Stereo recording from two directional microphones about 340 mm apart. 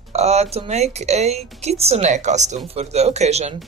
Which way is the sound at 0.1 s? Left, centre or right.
Centre.